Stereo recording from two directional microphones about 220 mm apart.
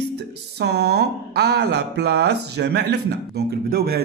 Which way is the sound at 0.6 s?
50° right (ahead or behind).